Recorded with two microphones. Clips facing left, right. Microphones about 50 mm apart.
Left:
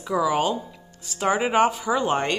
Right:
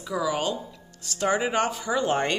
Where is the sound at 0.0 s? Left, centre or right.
Left.